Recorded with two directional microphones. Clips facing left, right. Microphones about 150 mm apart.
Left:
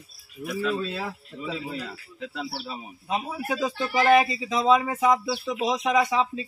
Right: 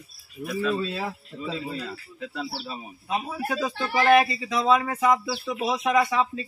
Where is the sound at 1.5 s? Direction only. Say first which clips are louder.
Right 1 dB; 10° left (ahead or behind).